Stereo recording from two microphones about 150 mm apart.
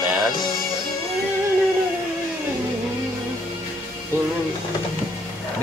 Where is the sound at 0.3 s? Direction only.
30° left (ahead or behind).